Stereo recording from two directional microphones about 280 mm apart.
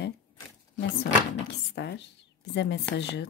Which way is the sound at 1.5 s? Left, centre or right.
Left.